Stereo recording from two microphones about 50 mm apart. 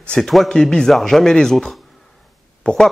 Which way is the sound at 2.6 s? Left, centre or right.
Centre.